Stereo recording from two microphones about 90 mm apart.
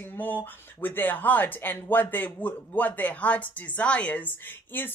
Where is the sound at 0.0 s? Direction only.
20° left (ahead or behind).